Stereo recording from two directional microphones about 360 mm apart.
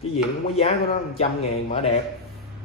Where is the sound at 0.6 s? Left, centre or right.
Centre.